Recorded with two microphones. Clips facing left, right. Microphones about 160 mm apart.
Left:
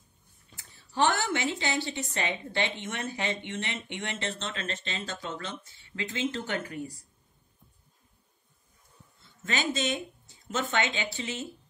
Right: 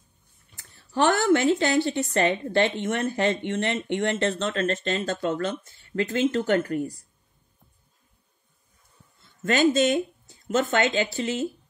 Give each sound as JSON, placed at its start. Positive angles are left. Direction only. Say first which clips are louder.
{"t": 0.6, "sound": "a woman's voice", "louder": "right 4 dB", "side_deg": -50}
{"t": 9.4, "sound": "a woman's voice", "louder": "right 10 dB", "side_deg": -50}